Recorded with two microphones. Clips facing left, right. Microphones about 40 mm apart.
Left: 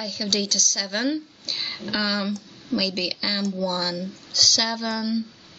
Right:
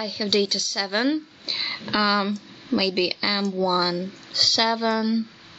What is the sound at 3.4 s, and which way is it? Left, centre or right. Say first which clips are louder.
Speech: right 2 dB; right.